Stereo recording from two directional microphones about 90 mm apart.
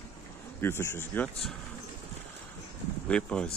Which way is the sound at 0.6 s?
25° left (ahead or behind).